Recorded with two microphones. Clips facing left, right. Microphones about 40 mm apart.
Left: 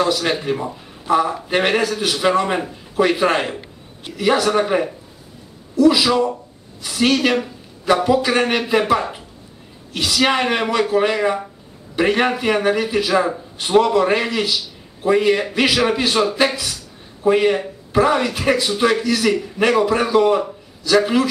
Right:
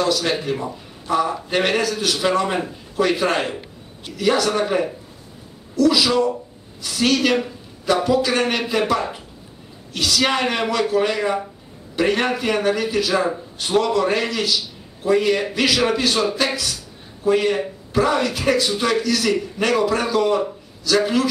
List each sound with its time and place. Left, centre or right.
0.0 s a man's voice: centre